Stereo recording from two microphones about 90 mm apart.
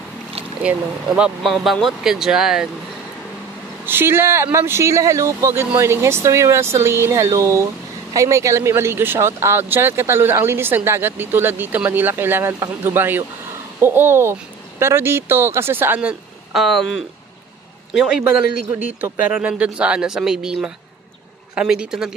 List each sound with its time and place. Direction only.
0.6 s speech: 10° right (ahead or behind)
1.4 s speech: centre (ahead or behind)
3.8 s speech: 25° right (ahead or behind)
16.5 s speech: centre (ahead or behind)
17.9 s speech: 10° right (ahead or behind)